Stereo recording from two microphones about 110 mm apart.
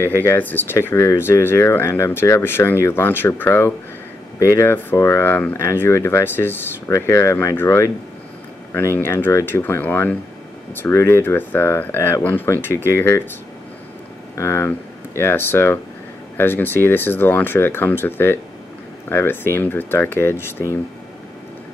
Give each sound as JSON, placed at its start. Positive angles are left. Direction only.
{"t": 0.0, "sound": "speech", "side_deg": 20}
{"t": 14.3, "sound": "speech", "side_deg": 25}